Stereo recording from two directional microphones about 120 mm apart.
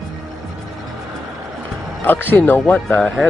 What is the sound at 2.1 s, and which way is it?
Speech, 15° left (ahead or behind).